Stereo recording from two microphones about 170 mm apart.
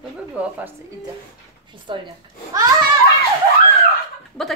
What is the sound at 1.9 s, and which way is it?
Speech, 30° right (ahead or behind).